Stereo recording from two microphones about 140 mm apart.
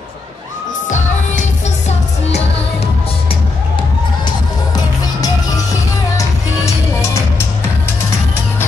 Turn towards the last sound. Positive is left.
turn(degrees=20)  # may be behind; listen again after turning